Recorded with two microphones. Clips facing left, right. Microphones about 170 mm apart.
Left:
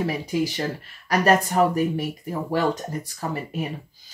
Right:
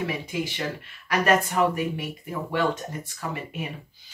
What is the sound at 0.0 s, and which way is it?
Speech, 40° left (ahead or behind).